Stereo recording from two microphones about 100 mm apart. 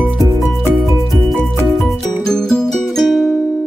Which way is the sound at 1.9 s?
5° left (ahead or behind).